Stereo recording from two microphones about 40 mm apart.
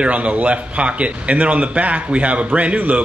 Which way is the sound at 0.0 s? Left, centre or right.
Right.